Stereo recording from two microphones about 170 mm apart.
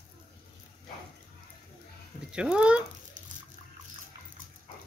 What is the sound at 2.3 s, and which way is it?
Speech, 5° right (ahead or behind).